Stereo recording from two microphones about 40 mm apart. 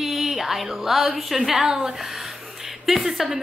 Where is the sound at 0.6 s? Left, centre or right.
Centre.